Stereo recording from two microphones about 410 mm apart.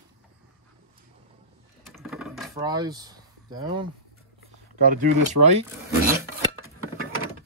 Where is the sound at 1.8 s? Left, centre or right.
Centre.